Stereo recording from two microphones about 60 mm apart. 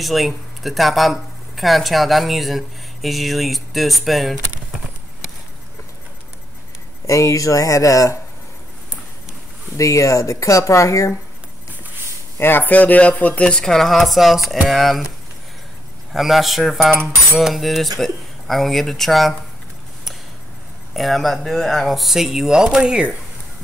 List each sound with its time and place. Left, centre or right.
0.0 s speech: centre
7.1 s speech: left
9.8 s speech: left
12.4 s speech: left; by 15.0 s centre
16.1 s speech: centre
20.9 s speech: centre